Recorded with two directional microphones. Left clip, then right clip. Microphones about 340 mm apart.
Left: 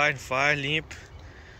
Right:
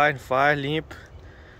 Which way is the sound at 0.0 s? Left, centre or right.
Centre.